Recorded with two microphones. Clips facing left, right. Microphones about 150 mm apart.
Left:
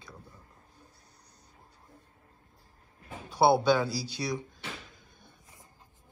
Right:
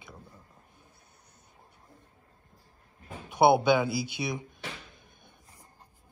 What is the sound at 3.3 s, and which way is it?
Speech, 20° right (ahead or behind).